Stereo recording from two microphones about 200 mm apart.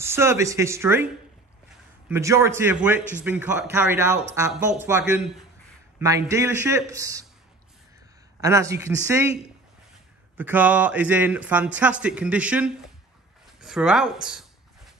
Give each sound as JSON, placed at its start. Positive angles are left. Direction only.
{"t": 0.0, "sound": "speech", "side_deg": -10}
{"t": 2.0, "sound": "speech", "side_deg": -15}
{"t": 8.4, "sound": "speech", "side_deg": -15}
{"t": 10.3, "sound": "speech", "side_deg": -10}